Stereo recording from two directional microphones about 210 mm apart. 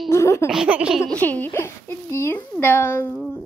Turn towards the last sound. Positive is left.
turn(degrees=10)  # may be behind; listen again after turning